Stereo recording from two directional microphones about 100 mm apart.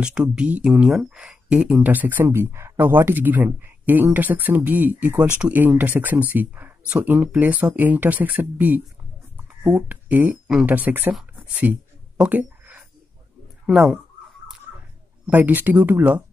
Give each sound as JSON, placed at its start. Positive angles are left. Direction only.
{"t": 0.4, "sound": "speech", "side_deg": -10}
{"t": 9.4, "sound": "a sound", "side_deg": -20}
{"t": 10.5, "sound": "speech", "side_deg": -15}
{"t": 12.2, "sound": "a sound", "side_deg": -15}
{"t": 13.7, "sound": "speech", "side_deg": 0}
{"t": 15.2, "sound": "speech", "side_deg": -15}